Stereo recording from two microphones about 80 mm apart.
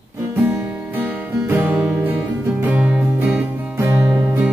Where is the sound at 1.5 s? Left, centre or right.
Right.